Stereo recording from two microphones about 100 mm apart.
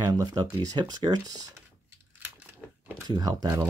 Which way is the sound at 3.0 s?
40° right (ahead or behind).